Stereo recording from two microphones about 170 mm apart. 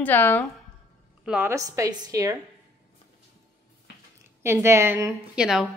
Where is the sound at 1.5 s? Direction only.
20° right (ahead or behind).